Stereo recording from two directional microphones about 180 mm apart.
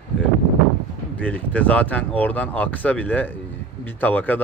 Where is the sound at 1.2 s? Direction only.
5° left (ahead or behind).